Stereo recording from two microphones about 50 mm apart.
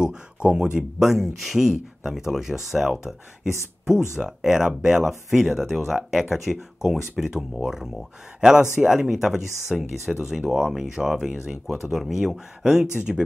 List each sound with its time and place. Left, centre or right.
0.0 s speech: centre
0.9 s speech: centre
4.2 s speech: centre